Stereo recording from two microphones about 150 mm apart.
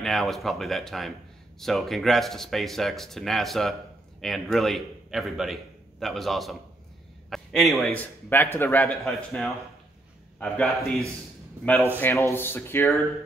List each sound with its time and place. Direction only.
0.0 s a man's voice: centre (ahead or behind)
8.0 s speech: 15° left (ahead or behind)
9.0 s speech: centre (ahead or behind)
11.6 s speech: 10° left (ahead or behind)